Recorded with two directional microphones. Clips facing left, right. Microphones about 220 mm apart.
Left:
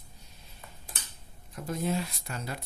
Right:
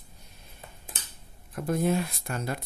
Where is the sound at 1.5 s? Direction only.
55° right (ahead or behind).